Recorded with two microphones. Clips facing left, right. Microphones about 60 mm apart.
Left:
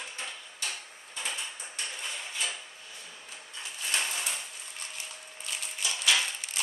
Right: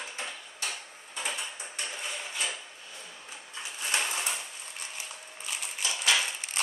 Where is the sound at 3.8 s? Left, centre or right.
Centre.